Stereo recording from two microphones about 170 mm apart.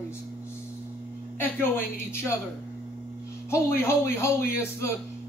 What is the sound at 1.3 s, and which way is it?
A woman's voice, 10° left (ahead or behind).